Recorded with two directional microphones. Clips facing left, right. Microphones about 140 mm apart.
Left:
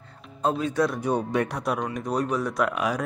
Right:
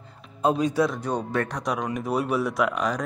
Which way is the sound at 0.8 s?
5° left (ahead or behind).